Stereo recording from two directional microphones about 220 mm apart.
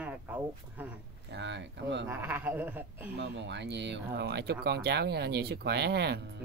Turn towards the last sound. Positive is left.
turn(degrees=-50)  # may be behind; listen again after turning